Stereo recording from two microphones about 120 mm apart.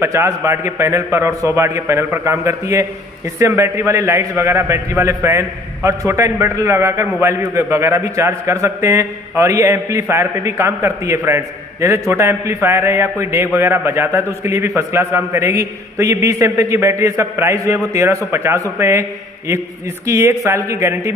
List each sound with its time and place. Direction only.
0.0 s a man's voice: 25° right (ahead or behind)